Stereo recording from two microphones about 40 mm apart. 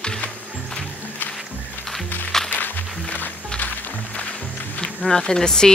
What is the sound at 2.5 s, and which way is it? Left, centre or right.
Music, left.